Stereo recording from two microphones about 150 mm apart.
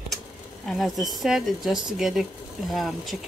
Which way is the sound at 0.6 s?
Centre (ahead or behind).